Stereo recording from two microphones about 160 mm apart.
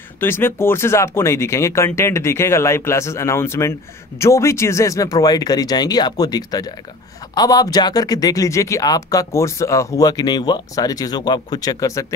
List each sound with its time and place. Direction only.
0.2 s speech: 15° left (ahead or behind)